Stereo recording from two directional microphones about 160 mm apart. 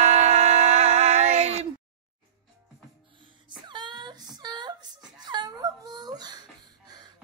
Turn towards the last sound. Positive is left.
turn(degrees=-25)  # may be behind; listen again after turning